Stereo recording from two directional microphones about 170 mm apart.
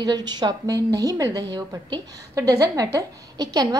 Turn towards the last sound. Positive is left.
turn(degrees=-20)  # may be behind; listen again after turning